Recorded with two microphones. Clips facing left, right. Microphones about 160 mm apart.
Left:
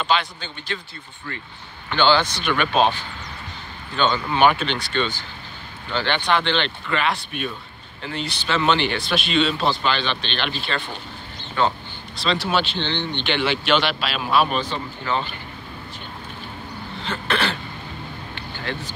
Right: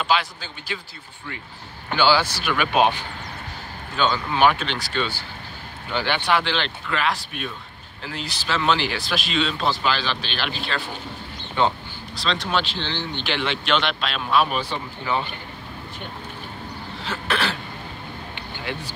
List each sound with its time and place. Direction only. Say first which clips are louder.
0.0 s speech: even; 5° right (ahead or behind)
2.0 s speech: left 1 dB; 10° right (ahead or behind)
3.9 s speech: left 1 dB; centre (ahead or behind)
11.6 s speech: even; 20° right (ahead or behind)
12.2 s speech: left 2 dB; 5° left (ahead or behind)
14.6 s speech: left 1 dB; 10° right (ahead or behind)
17.0 s throat clearing: left 1 dB; 5° right (ahead or behind)
18.3 s vehicle: left 1 dB; 10° right (ahead or behind)